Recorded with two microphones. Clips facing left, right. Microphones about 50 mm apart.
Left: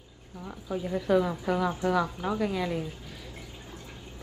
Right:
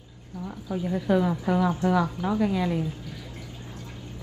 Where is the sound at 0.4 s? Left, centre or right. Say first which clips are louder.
Right 3 dB; centre.